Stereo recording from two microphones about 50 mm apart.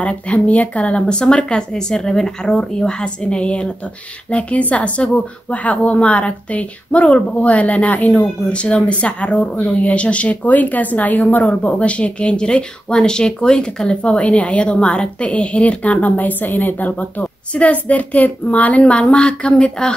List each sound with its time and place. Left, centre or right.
0.0 s speech: left